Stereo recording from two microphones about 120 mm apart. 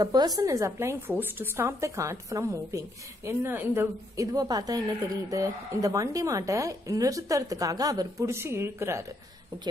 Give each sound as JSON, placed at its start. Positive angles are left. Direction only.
{"t": 0.0, "sound": "a woman's voice", "side_deg": -35}
{"t": 4.3, "sound": "a woman's voice", "side_deg": -35}